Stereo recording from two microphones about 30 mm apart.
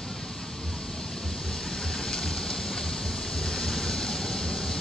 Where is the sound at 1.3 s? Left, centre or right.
Centre.